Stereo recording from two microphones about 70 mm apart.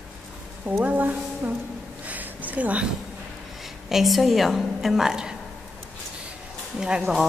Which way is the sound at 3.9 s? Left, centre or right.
Centre.